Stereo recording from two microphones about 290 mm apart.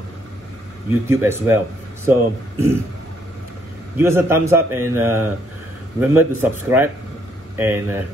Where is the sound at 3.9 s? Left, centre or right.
Centre.